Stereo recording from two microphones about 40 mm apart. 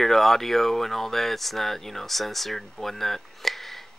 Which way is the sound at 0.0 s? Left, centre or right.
Centre.